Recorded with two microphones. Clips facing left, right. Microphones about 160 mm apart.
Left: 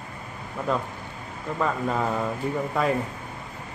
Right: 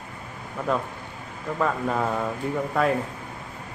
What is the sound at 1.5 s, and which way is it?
Speech, centre (ahead or behind).